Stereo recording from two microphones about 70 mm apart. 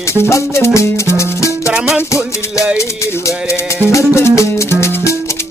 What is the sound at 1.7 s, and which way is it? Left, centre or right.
Music, centre.